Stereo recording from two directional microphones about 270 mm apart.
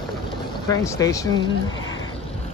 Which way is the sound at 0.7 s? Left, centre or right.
Centre.